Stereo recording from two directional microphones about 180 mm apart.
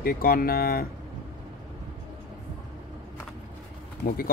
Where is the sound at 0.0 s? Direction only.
55° left (ahead or behind).